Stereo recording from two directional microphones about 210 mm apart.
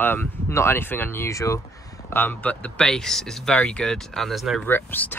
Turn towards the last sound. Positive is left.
turn(degrees=10)  # may be behind; listen again after turning